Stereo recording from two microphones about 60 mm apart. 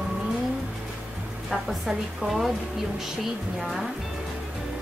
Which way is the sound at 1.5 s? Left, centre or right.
Centre.